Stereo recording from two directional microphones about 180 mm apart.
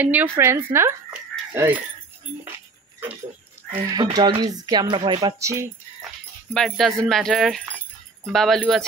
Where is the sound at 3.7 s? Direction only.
25° right (ahead or behind).